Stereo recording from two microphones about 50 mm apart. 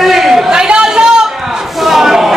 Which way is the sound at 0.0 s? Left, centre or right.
Centre.